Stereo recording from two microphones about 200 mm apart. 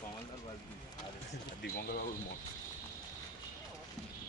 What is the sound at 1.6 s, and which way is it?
Speech, 50° left (ahead or behind).